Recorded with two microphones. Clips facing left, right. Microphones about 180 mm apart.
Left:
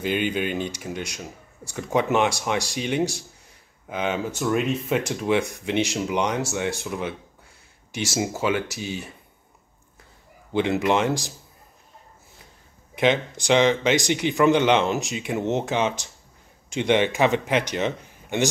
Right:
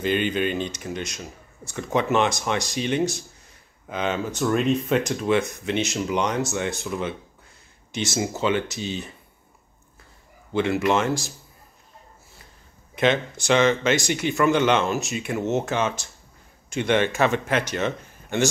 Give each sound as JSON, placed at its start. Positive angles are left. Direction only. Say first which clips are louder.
{"t": 0.0, "sound": "speech", "louder": "right 2 dB", "side_deg": 10}
{"t": 10.5, "sound": "speech", "louder": "even", "side_deg": 15}
{"t": 12.9, "sound": "speech", "louder": "even", "side_deg": 15}